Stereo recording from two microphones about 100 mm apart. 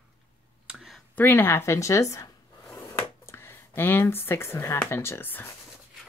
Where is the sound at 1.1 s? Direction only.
20° left (ahead or behind).